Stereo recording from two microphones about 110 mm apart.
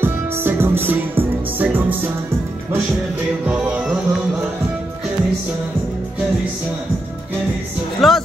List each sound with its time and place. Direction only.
0.0 s music: 20° right (ahead or behind)
3.4 s music: 10° right (ahead or behind)
8.0 s music: centre (ahead or behind)